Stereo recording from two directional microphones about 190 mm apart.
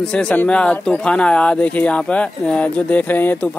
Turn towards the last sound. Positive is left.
turn(degrees=10)  # may be behind; listen again after turning